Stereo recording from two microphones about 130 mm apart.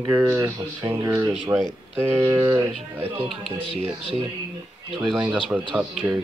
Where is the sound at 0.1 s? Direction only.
15° right (ahead or behind).